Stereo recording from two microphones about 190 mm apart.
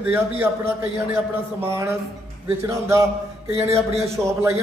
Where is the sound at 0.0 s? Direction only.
10° right (ahead or behind).